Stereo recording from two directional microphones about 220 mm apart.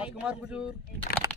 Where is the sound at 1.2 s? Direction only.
15° right (ahead or behind).